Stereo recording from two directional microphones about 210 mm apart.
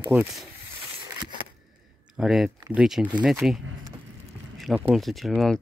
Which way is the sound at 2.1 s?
Centre (ahead or behind).